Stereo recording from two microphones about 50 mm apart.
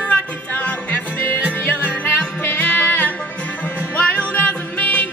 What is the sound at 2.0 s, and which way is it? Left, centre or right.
Music, left.